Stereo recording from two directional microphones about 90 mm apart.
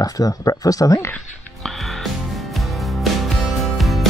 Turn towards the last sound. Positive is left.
turn(degrees=0)  # may be behind; listen again after turning